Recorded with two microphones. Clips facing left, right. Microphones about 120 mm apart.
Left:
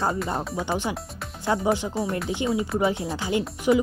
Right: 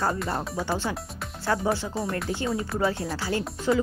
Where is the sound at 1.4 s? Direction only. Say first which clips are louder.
Left 2 dB; 15° left (ahead or behind).